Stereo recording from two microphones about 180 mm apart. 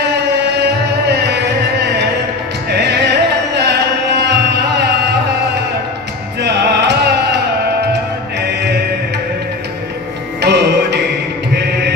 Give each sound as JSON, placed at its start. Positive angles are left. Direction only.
{"t": 0.1, "sound": "music", "side_deg": -70}
{"t": 2.7, "sound": "music", "side_deg": -70}
{"t": 3.5, "sound": "carnatic music", "side_deg": -70}
{"t": 6.4, "sound": "music", "side_deg": -65}
{"t": 10.4, "sound": "music", "side_deg": -70}